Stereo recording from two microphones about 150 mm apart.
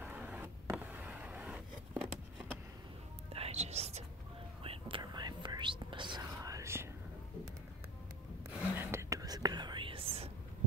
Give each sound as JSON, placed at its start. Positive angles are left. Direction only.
{"t": 0.0, "sound": "a sound", "side_deg": -10}
{"t": 3.3, "sound": "whispering", "side_deg": -40}
{"t": 4.6, "sound": "whispering", "side_deg": -35}
{"t": 8.7, "sound": "whispering", "side_deg": -20}